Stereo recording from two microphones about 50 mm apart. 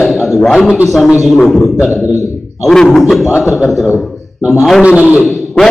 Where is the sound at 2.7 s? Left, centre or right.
Centre.